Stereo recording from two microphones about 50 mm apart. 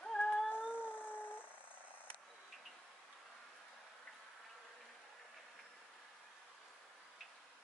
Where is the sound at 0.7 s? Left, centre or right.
Left.